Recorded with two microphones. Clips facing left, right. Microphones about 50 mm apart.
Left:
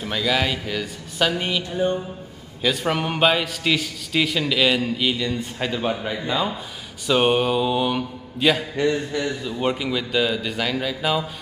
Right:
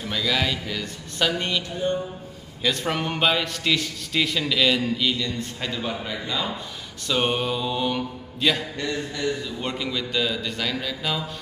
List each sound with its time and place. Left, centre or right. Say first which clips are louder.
0.0 s a man's voice: left 2 dB; centre
2.6 s a man's voice: left 3 dB; centre
8.8 s a man's voice: left 5 dB; left